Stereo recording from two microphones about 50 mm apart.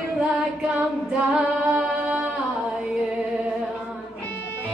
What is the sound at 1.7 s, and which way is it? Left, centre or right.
Music, right.